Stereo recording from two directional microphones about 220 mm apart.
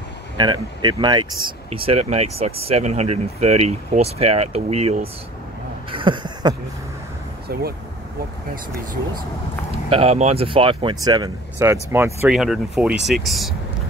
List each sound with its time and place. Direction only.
0.4 s speech: 20° right (ahead or behind)
5.9 s a sound: 20° right (ahead or behind)
9.9 s speech: 30° right (ahead or behind); by 13.6 s centre (ahead or behind)